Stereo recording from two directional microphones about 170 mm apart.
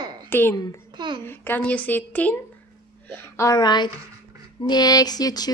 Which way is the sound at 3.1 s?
15° left (ahead or behind).